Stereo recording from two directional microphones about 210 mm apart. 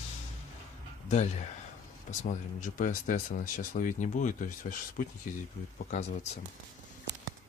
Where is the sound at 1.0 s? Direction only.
35° left (ahead or behind).